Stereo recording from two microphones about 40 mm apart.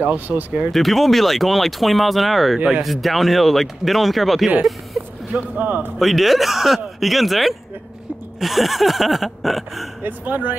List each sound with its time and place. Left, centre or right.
0.0 s speech: right
0.7 s speech: centre
5.0 s a sound: right
5.3 s speech: right
5.9 s speech: centre
10.0 s speech: right